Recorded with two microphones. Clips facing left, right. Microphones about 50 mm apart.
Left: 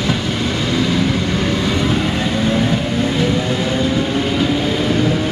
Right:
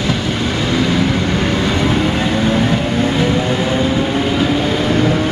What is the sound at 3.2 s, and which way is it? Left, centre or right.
Vehicle, right.